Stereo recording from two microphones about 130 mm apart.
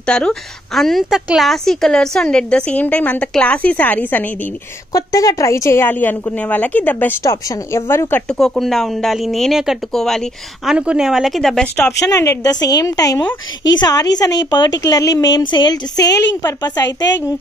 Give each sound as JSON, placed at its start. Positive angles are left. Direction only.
{"t": 0.0, "sound": "a woman's voice", "side_deg": 5}
{"t": 4.9, "sound": "a woman's voice", "side_deg": 25}
{"t": 8.3, "sound": "speech", "side_deg": 5}
{"t": 12.0, "sound": "a woman's voice", "side_deg": 25}